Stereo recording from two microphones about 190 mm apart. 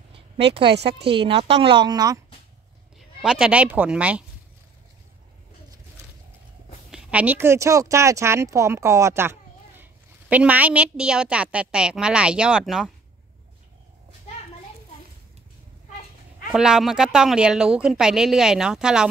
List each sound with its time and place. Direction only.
1.1 s speech: 30° right (ahead or behind)
3.0 s speech: centre (ahead or behind)
6.9 s speech: 5° right (ahead or behind)
16.5 s a woman's voice: 5° right (ahead or behind)